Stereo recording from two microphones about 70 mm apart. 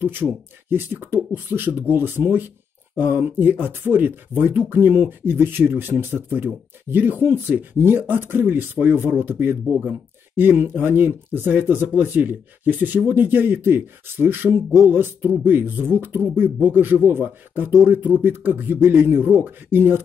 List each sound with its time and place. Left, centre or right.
0.0 s speech: right